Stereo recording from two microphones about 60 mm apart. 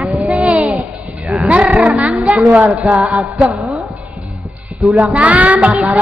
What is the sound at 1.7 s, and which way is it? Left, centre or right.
Child singing, centre.